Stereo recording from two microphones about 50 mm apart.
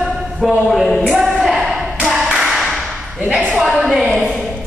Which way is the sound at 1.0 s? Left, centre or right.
Centre.